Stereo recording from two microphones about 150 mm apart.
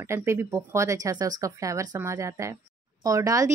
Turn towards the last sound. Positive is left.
turn(degrees=-20)  # may be behind; listen again after turning